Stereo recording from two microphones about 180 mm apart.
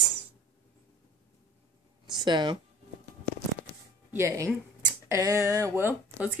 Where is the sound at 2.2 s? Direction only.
25° right (ahead or behind).